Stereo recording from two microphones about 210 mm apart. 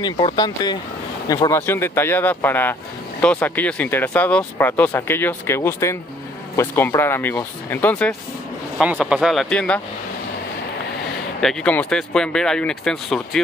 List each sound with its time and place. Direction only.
0.0 s speech: 20° left (ahead or behind)
8.7 s speech: 5° right (ahead or behind)
11.4 s speech: 5° left (ahead or behind)